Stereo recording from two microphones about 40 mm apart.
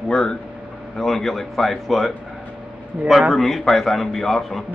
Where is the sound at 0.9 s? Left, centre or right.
Centre.